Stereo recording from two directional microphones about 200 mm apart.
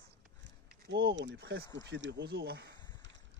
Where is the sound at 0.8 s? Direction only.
60° right (ahead or behind).